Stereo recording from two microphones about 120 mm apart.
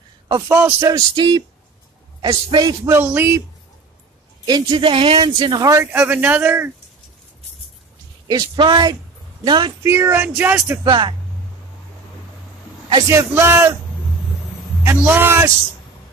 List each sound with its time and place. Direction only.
0.5 s a man's voice: 20° right (ahead or behind); by 2.9 s 35° right (ahead or behind)
2.9 s speech: 15° right (ahead or behind)
4.5 s a man's voice: 30° right (ahead or behind)
4.7 s speech: 45° right (ahead or behind)
5.2 s a man's voice: 35° right (ahead or behind)
5.9 s speech: 10° right (ahead or behind)
8.3 s a man's voice: 35° right (ahead or behind)
9.8 s speech: 20° right (ahead or behind)
10.8 s a man's voice: 40° right (ahead or behind)
13.1 s speech: 20° right (ahead or behind)
14.8 s speech: 20° right (ahead or behind)